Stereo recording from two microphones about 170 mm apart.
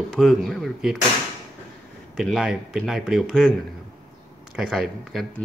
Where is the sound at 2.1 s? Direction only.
Centre (ahead or behind).